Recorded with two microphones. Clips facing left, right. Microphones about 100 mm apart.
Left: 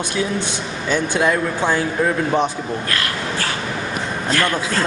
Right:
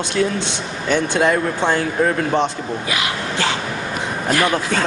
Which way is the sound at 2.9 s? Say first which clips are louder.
Right 1 dB; 15° right (ahead or behind).